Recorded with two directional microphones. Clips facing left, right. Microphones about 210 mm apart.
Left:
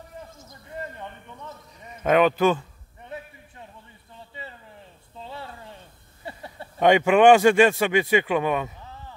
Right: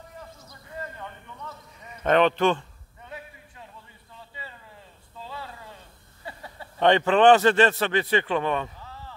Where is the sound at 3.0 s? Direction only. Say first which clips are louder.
Left 3 dB; 25° left (ahead or behind).